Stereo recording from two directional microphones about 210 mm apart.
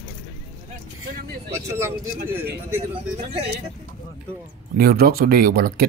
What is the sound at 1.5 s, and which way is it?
Speech, 15° right (ahead or behind).